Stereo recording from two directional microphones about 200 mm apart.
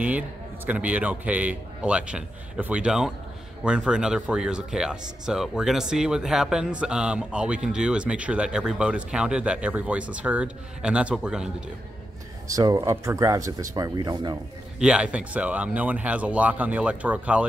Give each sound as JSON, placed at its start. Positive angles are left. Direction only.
{"t": 0.7, "sound": "speech", "side_deg": -5}
{"t": 12.4, "sound": "speech", "side_deg": -15}
{"t": 14.8, "sound": "speech", "side_deg": -5}